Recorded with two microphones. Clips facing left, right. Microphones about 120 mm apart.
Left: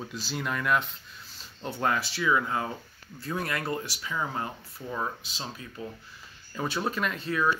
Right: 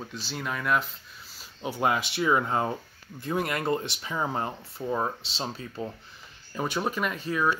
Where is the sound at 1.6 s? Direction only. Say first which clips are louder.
Right 2 dB; 15° right (ahead or behind).